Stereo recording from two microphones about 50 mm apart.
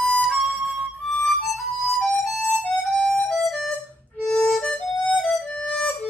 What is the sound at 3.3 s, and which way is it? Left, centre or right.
Music, centre.